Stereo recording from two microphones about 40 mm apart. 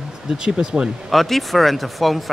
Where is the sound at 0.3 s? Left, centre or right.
Centre.